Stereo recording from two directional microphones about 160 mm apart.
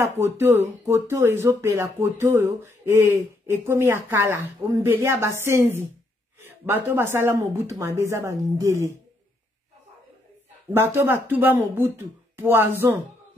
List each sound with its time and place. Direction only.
0.2 s speech: 15° right (ahead or behind)
10.7 s speech: 15° right (ahead or behind)